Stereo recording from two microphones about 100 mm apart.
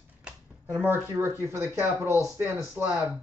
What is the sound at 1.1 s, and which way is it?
Speech, 25° right (ahead or behind).